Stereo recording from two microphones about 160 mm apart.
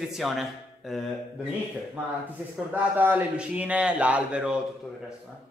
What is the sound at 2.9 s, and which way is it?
Speech, 10° right (ahead or behind).